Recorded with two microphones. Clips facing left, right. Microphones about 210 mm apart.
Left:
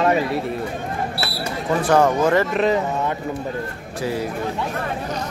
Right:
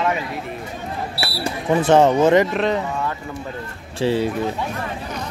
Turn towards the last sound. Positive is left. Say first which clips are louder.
# right 5 dB
turn(degrees=-30)  # may be behind; listen again after turning